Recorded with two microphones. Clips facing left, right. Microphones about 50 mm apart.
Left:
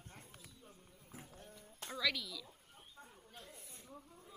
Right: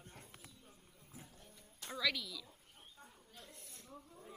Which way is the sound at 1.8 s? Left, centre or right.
Centre.